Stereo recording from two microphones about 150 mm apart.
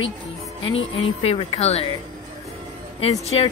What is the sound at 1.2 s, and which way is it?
Speech, 40° left (ahead or behind).